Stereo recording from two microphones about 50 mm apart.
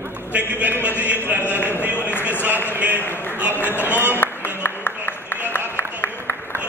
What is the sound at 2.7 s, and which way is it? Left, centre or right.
Speech, right.